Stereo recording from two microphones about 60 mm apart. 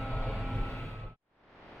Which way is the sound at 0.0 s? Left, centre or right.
Centre.